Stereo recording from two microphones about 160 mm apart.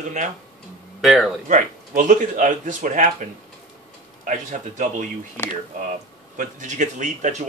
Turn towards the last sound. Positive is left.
turn(degrees=-50)  # may be behind; listen again after turning